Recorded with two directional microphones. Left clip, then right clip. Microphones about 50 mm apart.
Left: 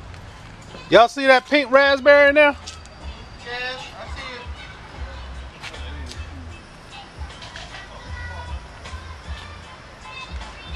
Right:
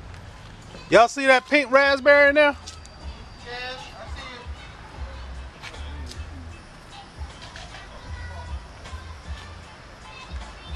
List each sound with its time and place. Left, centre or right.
0.8 s speech: right
3.4 s a sound: centre
5.6 s music: centre